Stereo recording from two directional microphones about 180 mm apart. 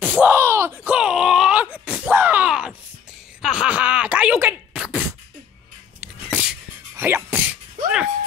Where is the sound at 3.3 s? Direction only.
5° right (ahead or behind).